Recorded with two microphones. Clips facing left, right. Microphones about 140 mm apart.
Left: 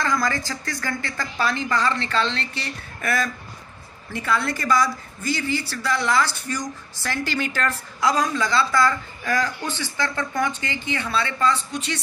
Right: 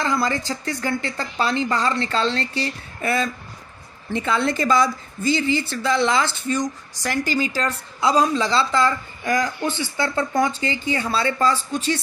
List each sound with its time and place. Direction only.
0.0 s a woman's voice: 25° right (ahead or behind)
7.6 s a woman's voice: 30° right (ahead or behind)
10.0 s a woman's voice: 30° right (ahead or behind)